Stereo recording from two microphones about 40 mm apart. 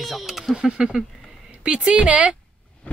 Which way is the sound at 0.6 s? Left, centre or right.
Centre.